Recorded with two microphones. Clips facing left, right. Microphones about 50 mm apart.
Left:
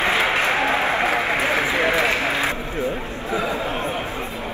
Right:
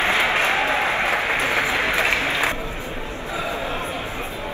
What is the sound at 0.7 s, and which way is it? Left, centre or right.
Applause, left.